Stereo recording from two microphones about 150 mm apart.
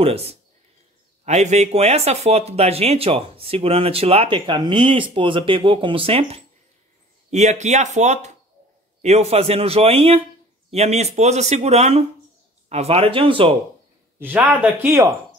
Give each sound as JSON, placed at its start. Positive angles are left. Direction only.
{"t": 0.0, "sound": "speech", "side_deg": -40}
{"t": 14.2, "sound": "speech", "side_deg": -10}